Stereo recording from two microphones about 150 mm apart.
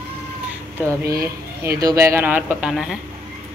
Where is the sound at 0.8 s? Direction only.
20° right (ahead or behind).